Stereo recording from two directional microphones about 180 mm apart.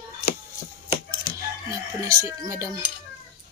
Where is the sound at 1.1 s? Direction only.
20° right (ahead or behind).